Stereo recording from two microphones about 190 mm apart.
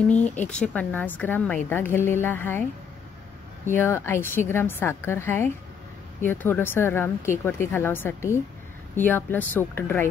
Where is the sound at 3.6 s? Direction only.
15° left (ahead or behind).